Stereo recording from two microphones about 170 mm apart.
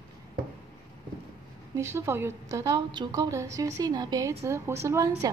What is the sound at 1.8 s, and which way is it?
A woman's voice, 15° right (ahead or behind).